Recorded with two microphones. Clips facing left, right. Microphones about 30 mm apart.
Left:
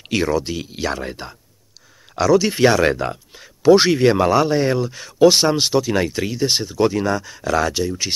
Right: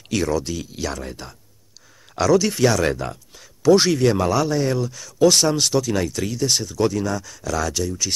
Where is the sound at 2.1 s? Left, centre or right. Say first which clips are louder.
Left 2 dB; centre.